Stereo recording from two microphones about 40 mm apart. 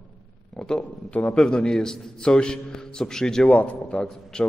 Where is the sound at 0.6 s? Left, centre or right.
Centre.